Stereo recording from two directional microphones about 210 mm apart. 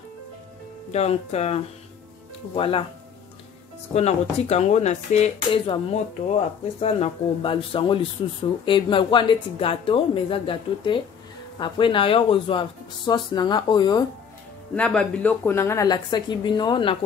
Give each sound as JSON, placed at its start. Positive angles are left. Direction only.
{"t": 0.9, "sound": "speech", "side_deg": 30}
{"t": 3.9, "sound": "speech", "side_deg": 30}
{"t": 14.8, "sound": "speech", "side_deg": 5}